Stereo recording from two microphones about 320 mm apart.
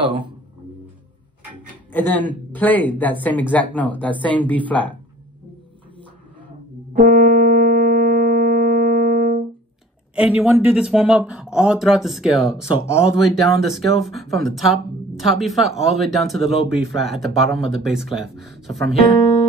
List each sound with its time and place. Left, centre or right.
1.9 s speech: centre
6.9 s music: right
10.1 s speech: centre